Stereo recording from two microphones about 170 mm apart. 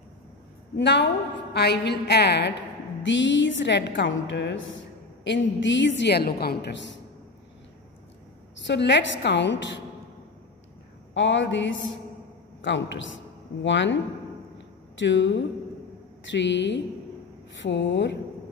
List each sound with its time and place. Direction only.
0.7 s a woman's voice: 90° left
1.5 s a woman's voice: 75° left (ahead or behind)
3.0 s a woman's voice: 90° left
8.6 s a woman's voice: 90° left
11.1 s a woman's voice: 90° left
15.0 s a woman's voice: 90° left